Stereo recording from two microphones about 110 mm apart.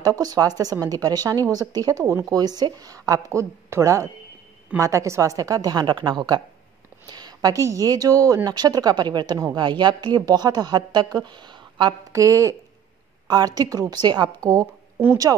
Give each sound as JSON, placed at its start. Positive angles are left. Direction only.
{"t": 0.0, "sound": "a woman's voice", "side_deg": -35}
{"t": 12.1, "sound": "a woman's voice", "side_deg": -30}